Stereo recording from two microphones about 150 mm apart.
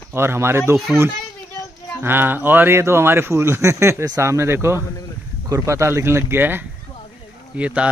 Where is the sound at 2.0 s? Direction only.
15° right (ahead or behind).